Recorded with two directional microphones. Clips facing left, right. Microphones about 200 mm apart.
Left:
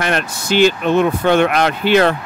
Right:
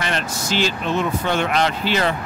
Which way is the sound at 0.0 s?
55° left (ahead or behind).